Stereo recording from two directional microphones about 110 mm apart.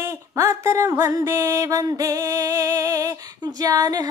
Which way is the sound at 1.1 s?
25° right (ahead or behind).